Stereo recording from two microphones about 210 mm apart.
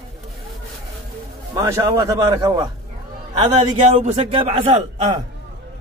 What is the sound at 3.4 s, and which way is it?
A man's voice, 30° right (ahead or behind).